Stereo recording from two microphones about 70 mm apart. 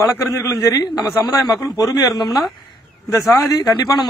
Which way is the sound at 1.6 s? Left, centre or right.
Left.